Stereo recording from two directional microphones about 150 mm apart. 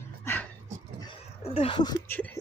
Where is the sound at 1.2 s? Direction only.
40° left (ahead or behind).